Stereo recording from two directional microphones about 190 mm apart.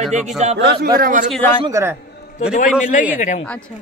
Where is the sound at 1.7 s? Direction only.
15° right (ahead or behind).